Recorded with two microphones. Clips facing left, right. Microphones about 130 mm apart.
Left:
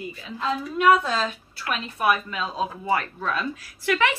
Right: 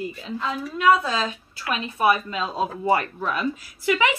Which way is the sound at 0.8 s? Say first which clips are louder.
Even; centre (ahead or behind).